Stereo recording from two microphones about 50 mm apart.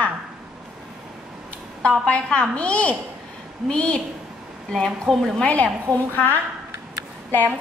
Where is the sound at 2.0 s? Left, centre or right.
Left.